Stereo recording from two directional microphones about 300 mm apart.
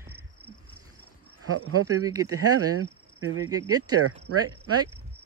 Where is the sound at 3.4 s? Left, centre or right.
Centre.